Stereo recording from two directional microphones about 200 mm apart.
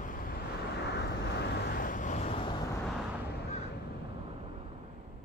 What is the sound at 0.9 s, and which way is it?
Vehicle, 55° left (ahead or behind).